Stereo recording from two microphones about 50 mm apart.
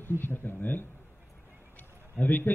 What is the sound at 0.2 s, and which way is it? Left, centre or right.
Speech, left.